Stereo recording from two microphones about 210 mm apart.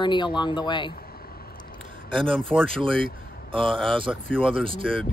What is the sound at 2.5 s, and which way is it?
Speech, 5° left (ahead or behind).